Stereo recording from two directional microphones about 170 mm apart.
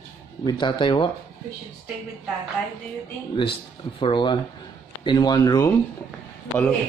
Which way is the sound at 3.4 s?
30° left (ahead or behind).